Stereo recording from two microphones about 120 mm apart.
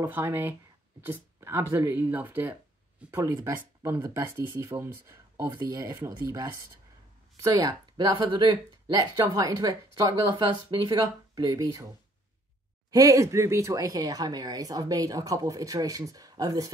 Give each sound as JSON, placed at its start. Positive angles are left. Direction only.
{"t": 0.0, "sound": "speech", "side_deg": -20}
{"t": 12.9, "sound": "speech", "side_deg": -30}